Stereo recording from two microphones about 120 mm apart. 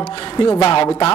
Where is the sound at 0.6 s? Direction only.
55° left (ahead or behind).